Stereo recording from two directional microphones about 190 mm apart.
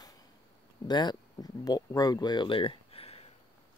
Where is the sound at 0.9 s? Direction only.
20° left (ahead or behind).